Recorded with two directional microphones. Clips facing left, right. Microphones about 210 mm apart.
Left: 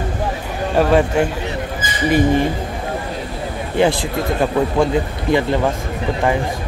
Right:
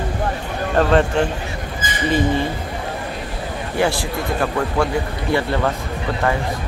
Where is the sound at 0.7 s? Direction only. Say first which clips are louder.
Left 2 dB; 10° left (ahead or behind).